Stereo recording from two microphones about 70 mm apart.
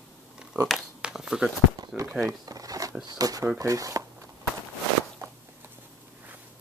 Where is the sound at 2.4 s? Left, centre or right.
Right.